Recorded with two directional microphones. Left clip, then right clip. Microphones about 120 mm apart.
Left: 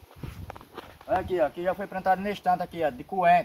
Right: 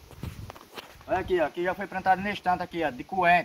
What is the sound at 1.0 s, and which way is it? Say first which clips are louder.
Speech: left 1 dB; 25° left (ahead or behind).